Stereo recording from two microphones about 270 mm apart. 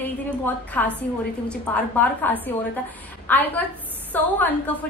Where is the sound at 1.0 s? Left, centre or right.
Centre.